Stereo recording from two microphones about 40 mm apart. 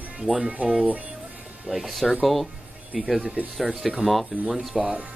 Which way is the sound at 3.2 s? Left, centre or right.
Right.